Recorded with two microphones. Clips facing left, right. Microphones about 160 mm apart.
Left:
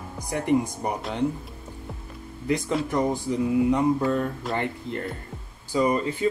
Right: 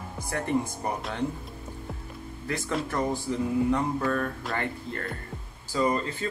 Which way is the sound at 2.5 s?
20° left (ahead or behind).